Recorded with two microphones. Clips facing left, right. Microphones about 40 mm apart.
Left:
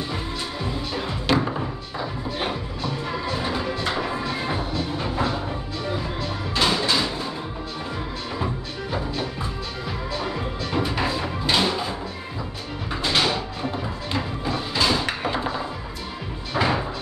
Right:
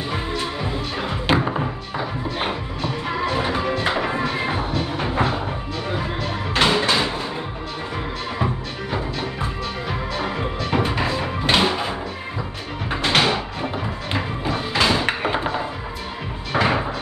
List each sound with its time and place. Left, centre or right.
0.1 s music: right
9.2 s music: right
11.0 s music: centre
11.4 s music: right
12.9 s music: right
16.5 s cupboard open or close: right